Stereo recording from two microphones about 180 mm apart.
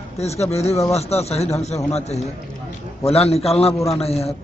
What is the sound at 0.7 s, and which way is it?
Speech, 15° left (ahead or behind).